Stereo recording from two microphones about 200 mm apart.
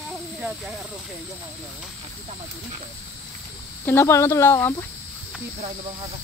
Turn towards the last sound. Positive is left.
turn(degrees=10)  # may be behind; listen again after turning